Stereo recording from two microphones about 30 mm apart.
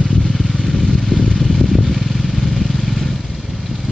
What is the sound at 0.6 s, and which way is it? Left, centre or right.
Vehicle, centre.